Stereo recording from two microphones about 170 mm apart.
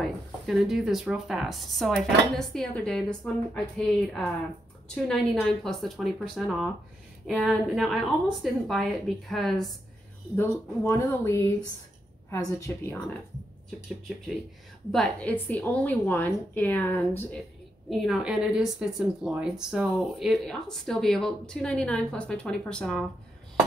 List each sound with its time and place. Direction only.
0.0 s speech: centre (ahead or behind)
10.3 s a woman's voice: 15° left (ahead or behind)
14.9 s a woman's voice: 5° left (ahead or behind)
17.8 s speech: centre (ahead or behind)